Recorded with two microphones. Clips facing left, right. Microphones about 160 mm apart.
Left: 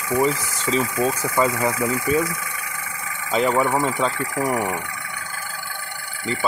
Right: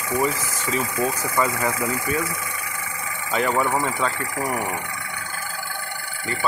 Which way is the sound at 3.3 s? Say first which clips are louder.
Left 2 dB; 20° left (ahead or behind).